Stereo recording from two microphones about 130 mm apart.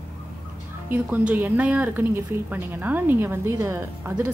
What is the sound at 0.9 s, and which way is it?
Speech, 15° right (ahead or behind).